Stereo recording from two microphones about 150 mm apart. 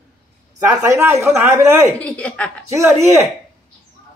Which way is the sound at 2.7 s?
20° right (ahead or behind).